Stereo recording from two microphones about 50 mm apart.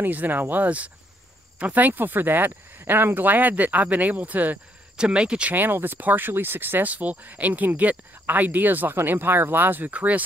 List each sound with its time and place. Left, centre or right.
0.0 s speech: right
4.9 s speech: centre
5.5 s speech: right
6.9 s speech: right